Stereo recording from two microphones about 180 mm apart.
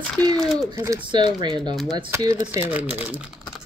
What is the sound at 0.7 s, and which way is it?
Speech, 20° right (ahead or behind).